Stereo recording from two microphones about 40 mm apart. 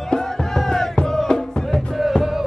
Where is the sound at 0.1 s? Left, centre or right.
Centre.